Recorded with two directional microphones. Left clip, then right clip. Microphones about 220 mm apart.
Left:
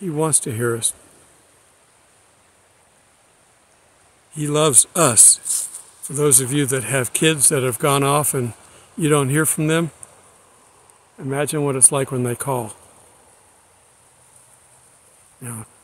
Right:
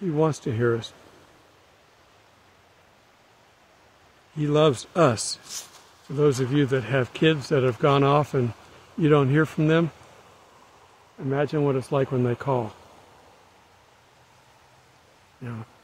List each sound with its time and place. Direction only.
0.1 s speech: 15° left (ahead or behind)
4.4 s speech: 15° left (ahead or behind)
11.1 s speech: 20° left (ahead or behind)